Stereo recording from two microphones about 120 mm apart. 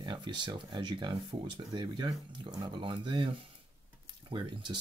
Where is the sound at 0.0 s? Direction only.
40° right (ahead or behind).